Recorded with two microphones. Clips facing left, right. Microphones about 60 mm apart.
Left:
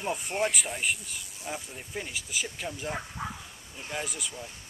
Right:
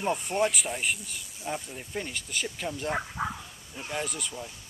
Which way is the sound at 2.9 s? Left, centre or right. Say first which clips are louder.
Right 5 dB; right.